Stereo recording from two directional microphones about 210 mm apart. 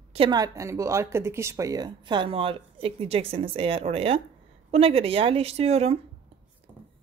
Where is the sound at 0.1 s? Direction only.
20° right (ahead or behind).